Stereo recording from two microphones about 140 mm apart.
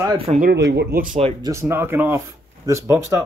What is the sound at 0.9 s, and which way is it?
Speech, 80° right.